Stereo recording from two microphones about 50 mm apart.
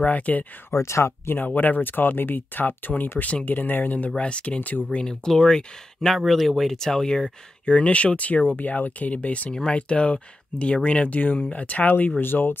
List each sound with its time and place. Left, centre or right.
0.0 s speech: left
0.7 s speech: left
1.3 s speech: left
4.2 s speech: left
4.6 s speech: left
5.0 s speech: centre
7.6 s speech: left